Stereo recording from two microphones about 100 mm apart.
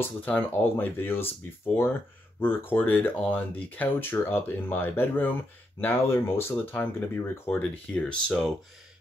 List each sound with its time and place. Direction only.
0.0 s speech: 15° left (ahead or behind)
2.4 s speech: 20° left (ahead or behind)